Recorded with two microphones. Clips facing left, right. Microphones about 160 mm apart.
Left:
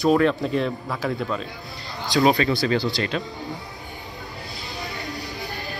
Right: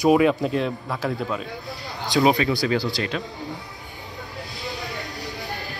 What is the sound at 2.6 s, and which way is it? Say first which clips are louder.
Speech: left 1 dB; 5° right (ahead or behind).